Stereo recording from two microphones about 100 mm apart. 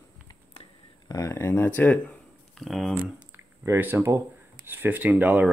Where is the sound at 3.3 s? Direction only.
20° right (ahead or behind).